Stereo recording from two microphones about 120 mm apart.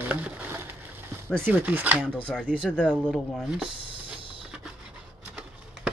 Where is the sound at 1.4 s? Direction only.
15° right (ahead or behind).